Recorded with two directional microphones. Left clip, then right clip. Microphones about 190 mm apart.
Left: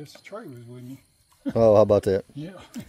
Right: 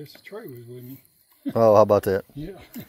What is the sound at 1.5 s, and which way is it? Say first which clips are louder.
Speech: right 1 dB; 10° left (ahead or behind).